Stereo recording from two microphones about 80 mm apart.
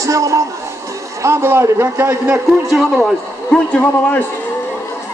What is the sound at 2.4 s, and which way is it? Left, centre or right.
Speech, centre.